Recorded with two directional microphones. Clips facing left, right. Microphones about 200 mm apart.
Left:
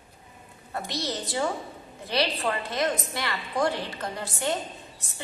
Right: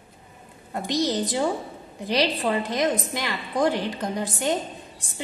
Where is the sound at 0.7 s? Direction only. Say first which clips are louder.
Right 7 dB; 15° right (ahead or behind).